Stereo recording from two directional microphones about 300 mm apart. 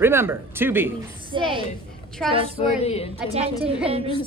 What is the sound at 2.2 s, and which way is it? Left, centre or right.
Speech, centre.